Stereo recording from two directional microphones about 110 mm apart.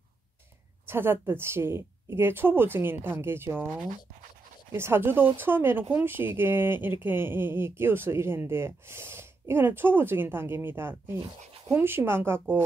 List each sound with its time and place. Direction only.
0.8 s speech: 20° right (ahead or behind)
4.7 s speech: 20° right (ahead or behind)